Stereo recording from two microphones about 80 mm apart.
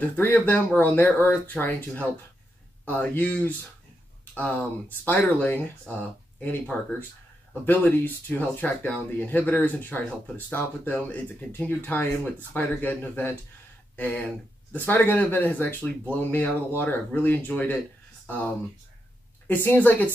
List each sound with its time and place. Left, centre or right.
0.1 s speech: left
18.2 s a sound: centre
19.4 s speech: left